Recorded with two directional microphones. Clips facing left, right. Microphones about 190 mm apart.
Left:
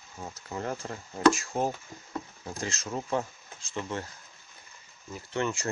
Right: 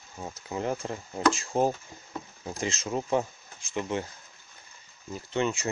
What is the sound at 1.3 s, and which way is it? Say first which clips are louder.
Speech: right 4 dB; 30° right (ahead or behind).